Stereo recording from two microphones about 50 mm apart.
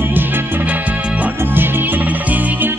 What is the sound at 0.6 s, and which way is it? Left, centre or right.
Music, right.